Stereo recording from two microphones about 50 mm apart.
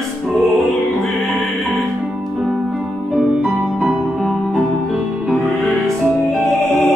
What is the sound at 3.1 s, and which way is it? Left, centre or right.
Music, centre.